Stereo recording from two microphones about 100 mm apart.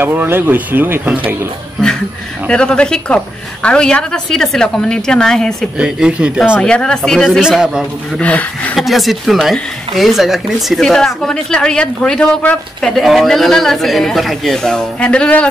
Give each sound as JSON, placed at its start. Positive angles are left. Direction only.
{"t": 0.0, "sound": "speech", "side_deg": -20}
{"t": 2.4, "sound": "a woman's voice", "side_deg": 10}
{"t": 5.8, "sound": "speech", "side_deg": -10}
{"t": 6.6, "sound": "a woman's voice", "side_deg": 5}
{"t": 8.2, "sound": "a woman's voice", "side_deg": 15}
{"t": 8.7, "sound": "speech", "side_deg": 0}